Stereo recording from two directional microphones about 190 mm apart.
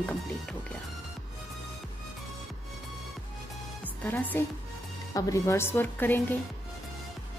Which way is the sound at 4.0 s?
10° left (ahead or behind).